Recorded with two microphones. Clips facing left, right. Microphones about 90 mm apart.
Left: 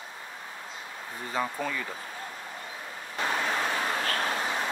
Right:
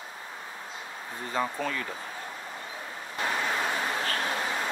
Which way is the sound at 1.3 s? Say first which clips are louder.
Right 1 dB; 5° left (ahead or behind).